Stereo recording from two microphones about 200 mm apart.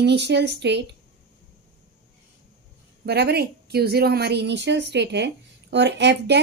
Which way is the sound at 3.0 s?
55° right (ahead or behind).